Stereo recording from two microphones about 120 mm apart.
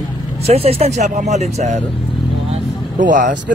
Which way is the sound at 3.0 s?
90° right.